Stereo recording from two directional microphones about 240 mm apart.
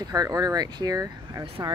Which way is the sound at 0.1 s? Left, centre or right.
Centre.